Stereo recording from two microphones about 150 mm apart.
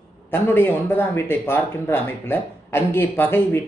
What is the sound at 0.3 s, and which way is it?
Speech, 15° left (ahead or behind).